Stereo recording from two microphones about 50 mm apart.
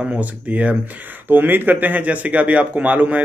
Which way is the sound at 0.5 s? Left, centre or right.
Right.